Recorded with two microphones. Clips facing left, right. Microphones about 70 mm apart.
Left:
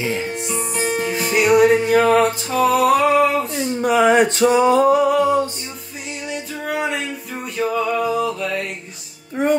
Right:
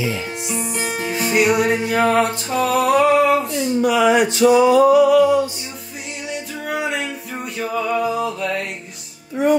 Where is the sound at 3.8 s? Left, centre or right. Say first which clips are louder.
Left 2 dB; left.